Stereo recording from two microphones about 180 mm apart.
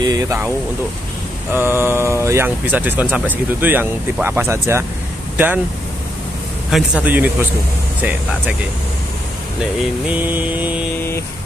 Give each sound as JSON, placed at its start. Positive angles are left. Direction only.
{"t": 0.0, "sound": "speech", "side_deg": -20}
{"t": 1.5, "sound": "speech", "side_deg": -10}
{"t": 6.7, "sound": "speech", "side_deg": -5}
{"t": 10.0, "sound": "speech", "side_deg": -10}
{"t": 11.0, "sound": "vehicle", "side_deg": 15}